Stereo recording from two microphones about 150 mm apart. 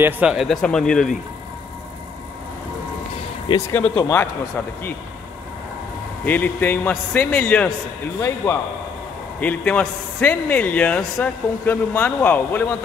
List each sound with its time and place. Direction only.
0.0 s speech: 5° right (ahead or behind)
3.4 s a man's voice: 20° left (ahead or behind)
6.2 s a man's voice: 10° left (ahead or behind)
9.4 s a man's voice: 10° left (ahead or behind)